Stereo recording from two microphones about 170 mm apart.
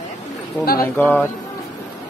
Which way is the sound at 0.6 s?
60° left (ahead or behind).